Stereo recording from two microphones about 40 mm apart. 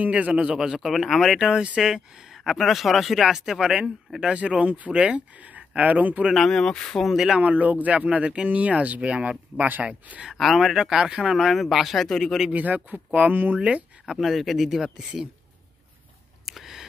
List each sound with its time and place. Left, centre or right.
0.0 s speech: right
0.6 s speech: centre
0.8 s speech: centre; by 6.2 s right
6.3 s speech: centre
7.3 s speech: right
9.6 s speech: right
9.8 s speech: right
10.3 s speech: centre
10.9 s speech: centre
11.3 s speech: centre
12.5 s speech: right
13.6 s speech: right
14.0 s speech: centre
16.4 s a sound: centre